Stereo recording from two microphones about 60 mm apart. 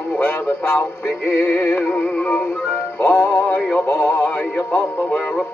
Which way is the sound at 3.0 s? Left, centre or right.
Left.